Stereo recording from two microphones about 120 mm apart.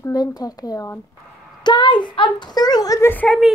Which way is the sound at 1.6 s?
40° left (ahead or behind).